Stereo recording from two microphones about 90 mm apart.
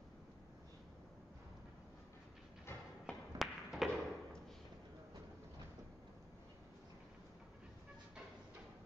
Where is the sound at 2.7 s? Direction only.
25° left (ahead or behind).